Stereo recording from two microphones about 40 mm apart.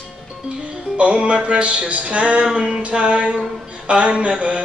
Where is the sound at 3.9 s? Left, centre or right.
Right.